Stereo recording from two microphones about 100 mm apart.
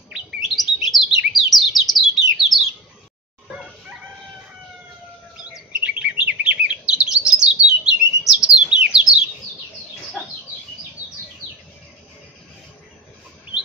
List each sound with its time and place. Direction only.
0.1 s chirp: centre (ahead or behind)
1.8 s bird: centre (ahead or behind)
5.5 s chirp: 10° right (ahead or behind)
7.6 s bird: 5° right (ahead or behind)